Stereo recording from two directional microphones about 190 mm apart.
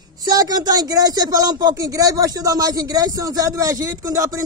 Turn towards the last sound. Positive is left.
turn(degrees=-15)  # may be behind; listen again after turning